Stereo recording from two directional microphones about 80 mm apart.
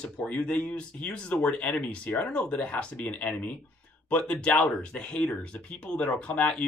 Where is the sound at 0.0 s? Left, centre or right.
Centre.